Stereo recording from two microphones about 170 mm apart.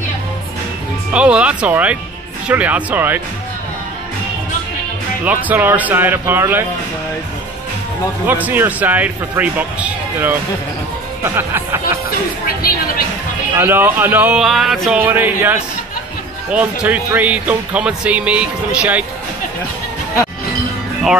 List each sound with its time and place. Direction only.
1.1 s speech: 5° right (ahead or behind)
5.2 s speech: 10° right (ahead or behind)
8.3 s speech: 10° right (ahead or behind)
12.6 s speech: 60° left (ahead or behind)
13.6 s speech: 10° right (ahead or behind)